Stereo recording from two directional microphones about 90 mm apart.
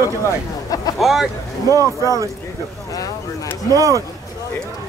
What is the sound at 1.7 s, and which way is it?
Speech, 40° right (ahead or behind).